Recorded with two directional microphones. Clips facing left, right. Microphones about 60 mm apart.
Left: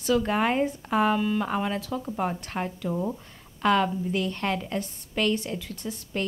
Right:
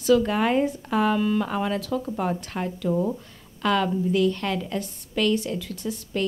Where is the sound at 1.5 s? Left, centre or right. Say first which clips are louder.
Right 2 dB; centre.